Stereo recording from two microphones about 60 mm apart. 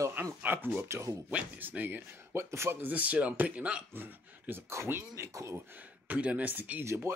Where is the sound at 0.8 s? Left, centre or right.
Right.